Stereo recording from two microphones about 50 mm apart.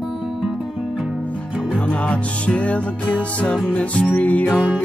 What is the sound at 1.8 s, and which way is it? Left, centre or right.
Music, left.